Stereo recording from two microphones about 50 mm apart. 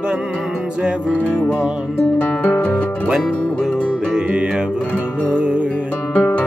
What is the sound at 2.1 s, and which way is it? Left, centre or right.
Music, left.